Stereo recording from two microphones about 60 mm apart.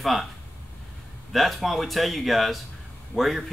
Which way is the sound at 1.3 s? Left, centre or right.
Centre.